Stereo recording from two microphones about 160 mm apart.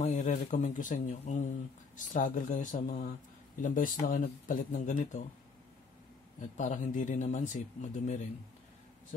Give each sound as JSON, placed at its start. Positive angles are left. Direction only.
{"t": 0.0, "sound": "speech", "side_deg": 45}
{"t": 6.5, "sound": "speech", "side_deg": 50}